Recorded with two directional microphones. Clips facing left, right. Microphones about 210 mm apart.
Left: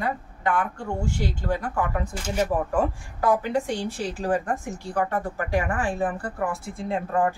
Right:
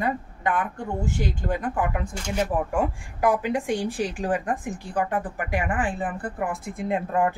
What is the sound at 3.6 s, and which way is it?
A woman's voice, 15° right (ahead or behind).